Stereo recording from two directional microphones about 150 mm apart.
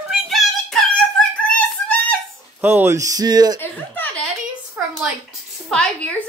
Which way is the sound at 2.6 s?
15° right (ahead or behind).